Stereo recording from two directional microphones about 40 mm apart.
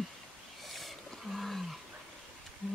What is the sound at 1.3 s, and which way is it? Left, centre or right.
Wild animals, centre.